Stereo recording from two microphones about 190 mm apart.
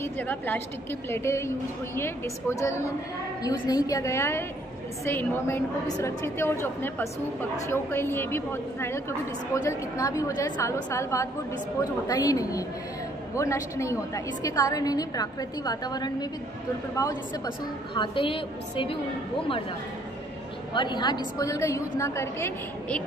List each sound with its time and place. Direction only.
0.0 s a woman's voice: 10° left (ahead or behind); by 18.9 s 30° left (ahead or behind)
20.7 s a woman's voice: 25° left (ahead or behind)